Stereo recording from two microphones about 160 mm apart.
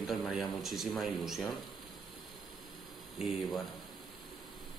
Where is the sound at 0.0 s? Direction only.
Centre (ahead or behind).